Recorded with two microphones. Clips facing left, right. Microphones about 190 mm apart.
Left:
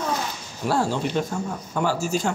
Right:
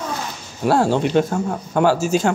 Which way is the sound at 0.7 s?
65° right (ahead or behind).